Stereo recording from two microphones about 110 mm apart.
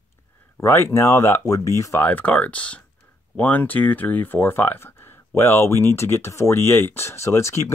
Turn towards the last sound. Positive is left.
turn(degrees=25)  # may be behind; listen again after turning